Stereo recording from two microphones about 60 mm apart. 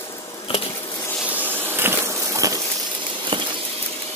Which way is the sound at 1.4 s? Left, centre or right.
Right.